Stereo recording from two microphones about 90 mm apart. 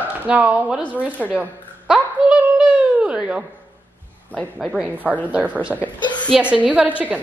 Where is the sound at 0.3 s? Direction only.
20° right (ahead or behind).